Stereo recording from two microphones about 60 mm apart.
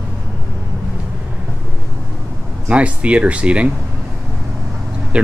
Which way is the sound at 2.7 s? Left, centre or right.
Right.